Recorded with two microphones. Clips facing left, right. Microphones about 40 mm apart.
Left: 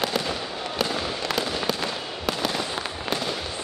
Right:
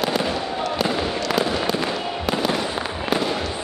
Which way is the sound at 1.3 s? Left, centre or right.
Centre.